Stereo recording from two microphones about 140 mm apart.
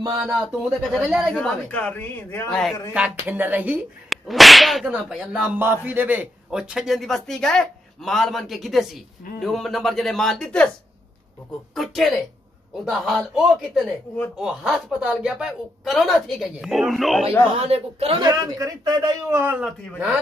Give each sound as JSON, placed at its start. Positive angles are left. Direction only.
{"t": 0.2, "sound": "whip", "side_deg": -5}
{"t": 1.3, "sound": "speech", "side_deg": 5}
{"t": 2.5, "sound": "whip", "side_deg": 0}
{"t": 2.9, "sound": "speech", "side_deg": -10}
{"t": 4.1, "sound": "whip", "side_deg": 0}
{"t": 11.7, "sound": "whip", "side_deg": 0}
{"t": 17.6, "sound": "speech", "side_deg": -45}
{"t": 18.2, "sound": "speech", "side_deg": -30}
{"t": 19.3, "sound": "speech", "side_deg": -15}